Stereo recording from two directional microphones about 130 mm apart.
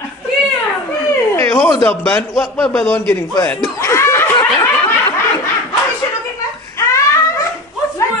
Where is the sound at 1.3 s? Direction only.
20° left (ahead or behind).